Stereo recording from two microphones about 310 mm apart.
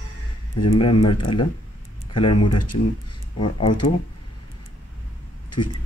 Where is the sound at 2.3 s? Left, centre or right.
Left.